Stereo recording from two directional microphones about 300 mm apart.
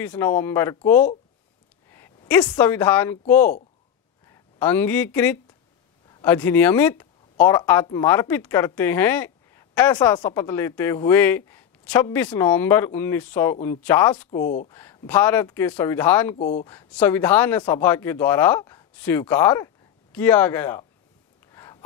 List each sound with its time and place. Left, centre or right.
0.0 s a woman's voice: centre
14.4 s speech: left
14.7 s speech: centre
16.3 s speech: left
16.6 s speech: centre
21.5 s a sound: centre